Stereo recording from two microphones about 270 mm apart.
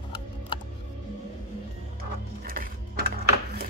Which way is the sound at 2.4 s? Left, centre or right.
Right.